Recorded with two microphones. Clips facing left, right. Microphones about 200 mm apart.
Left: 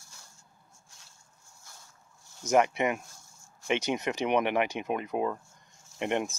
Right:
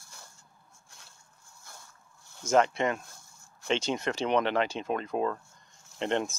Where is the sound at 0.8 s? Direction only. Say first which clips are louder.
Right 2 dB; 55° right (ahead or behind).